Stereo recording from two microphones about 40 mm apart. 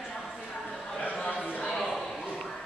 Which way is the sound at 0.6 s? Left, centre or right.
Centre.